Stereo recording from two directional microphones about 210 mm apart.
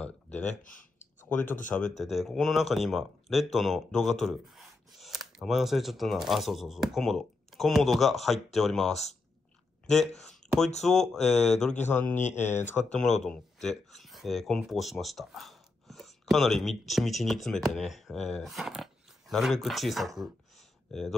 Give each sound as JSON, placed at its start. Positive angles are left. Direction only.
{"t": 0.0, "sound": "a sound", "side_deg": 5}
{"t": 0.6, "sound": "speech", "side_deg": 40}
{"t": 1.2, "sound": "a man's voice", "side_deg": 10}